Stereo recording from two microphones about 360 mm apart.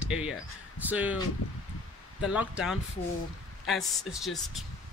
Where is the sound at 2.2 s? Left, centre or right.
Centre.